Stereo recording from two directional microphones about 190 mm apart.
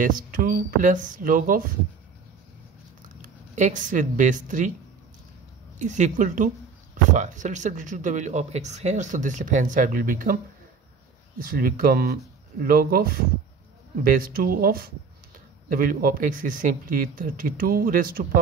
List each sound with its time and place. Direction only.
0.0 s speech: 45° right (ahead or behind)
3.2 s speech: 40° right (ahead or behind)
5.8 s speech: 40° right (ahead or behind)
11.4 s speech: 50° right (ahead or behind)